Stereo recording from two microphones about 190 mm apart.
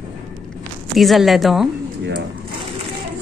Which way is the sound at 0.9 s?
Centre (ahead or behind).